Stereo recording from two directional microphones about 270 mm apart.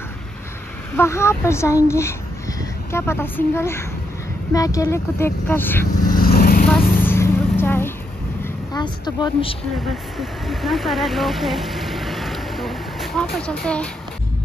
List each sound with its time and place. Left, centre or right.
0.9 s speech: centre
6.1 s vehicle: left
7.0 s vehicle: centre
8.7 s speech: centre
10.1 s speech: centre